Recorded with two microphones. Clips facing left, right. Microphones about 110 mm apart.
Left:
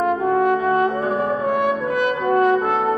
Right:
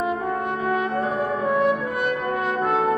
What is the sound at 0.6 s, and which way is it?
Brass instrument, centre (ahead or behind).